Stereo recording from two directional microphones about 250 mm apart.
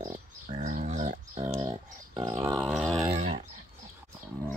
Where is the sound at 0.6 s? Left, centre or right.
Right.